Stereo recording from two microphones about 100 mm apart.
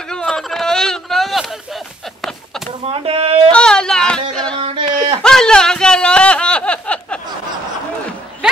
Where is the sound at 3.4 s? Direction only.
10° left (ahead or behind).